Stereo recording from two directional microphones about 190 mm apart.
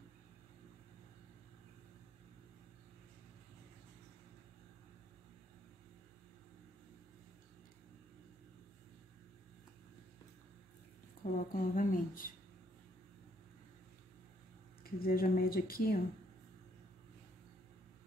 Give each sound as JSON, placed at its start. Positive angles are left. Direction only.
{"t": 11.3, "sound": "speech", "side_deg": 45}
{"t": 14.8, "sound": "speech", "side_deg": 50}